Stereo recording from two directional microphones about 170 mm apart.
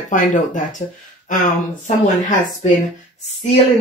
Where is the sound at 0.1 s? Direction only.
50° left (ahead or behind).